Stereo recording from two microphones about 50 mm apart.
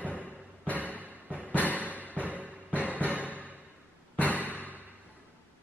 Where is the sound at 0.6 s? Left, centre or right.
Left.